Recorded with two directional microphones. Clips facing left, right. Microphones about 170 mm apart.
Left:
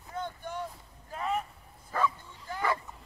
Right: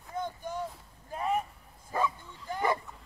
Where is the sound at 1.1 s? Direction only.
15° right (ahead or behind).